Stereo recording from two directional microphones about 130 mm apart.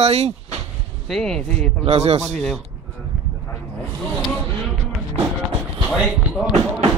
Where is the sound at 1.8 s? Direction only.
50° right (ahead or behind).